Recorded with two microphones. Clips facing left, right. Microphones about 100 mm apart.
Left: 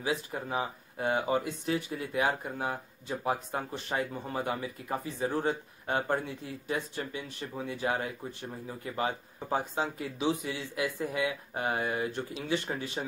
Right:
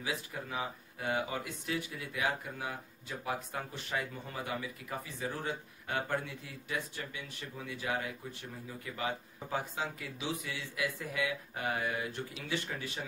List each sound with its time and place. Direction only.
0.0 s speech: 30° left (ahead or behind)